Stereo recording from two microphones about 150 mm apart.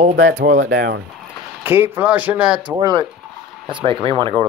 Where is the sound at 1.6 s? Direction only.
15° right (ahead or behind).